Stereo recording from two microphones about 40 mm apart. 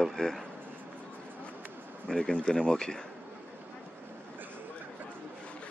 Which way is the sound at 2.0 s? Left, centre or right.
Centre.